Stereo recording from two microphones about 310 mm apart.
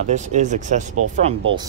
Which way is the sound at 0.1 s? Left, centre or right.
Right.